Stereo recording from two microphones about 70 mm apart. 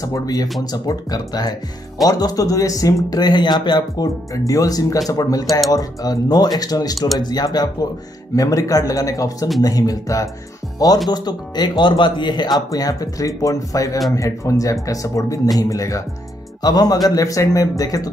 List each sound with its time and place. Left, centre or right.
0.0 s speech: left
3.1 s speech: left
8.4 s speech: left
11.1 s speech: left
16.6 s speech: left
17.1 s speech: left